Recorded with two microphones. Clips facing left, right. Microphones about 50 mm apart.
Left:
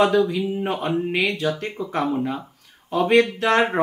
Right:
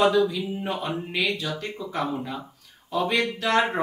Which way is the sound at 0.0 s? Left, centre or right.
Left.